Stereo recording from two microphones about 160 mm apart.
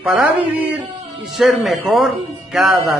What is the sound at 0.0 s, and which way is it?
Speech, 10° right (ahead or behind).